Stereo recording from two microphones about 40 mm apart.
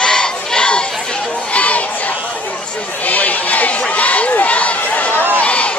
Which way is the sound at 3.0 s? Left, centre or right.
Left.